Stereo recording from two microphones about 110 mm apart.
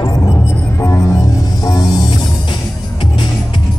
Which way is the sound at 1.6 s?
35° left (ahead or behind).